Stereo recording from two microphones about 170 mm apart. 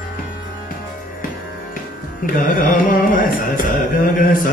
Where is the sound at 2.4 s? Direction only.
55° left (ahead or behind).